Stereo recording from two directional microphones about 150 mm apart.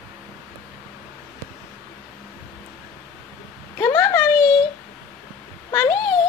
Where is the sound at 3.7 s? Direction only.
15° left (ahead or behind).